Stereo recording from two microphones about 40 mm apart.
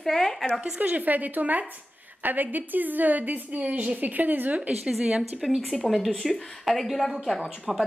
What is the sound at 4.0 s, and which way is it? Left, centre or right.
Speech, right.